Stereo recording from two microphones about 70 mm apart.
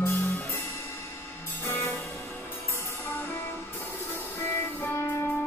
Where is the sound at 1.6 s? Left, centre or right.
Left.